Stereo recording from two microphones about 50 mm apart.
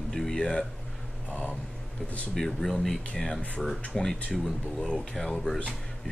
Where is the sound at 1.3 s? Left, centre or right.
Left.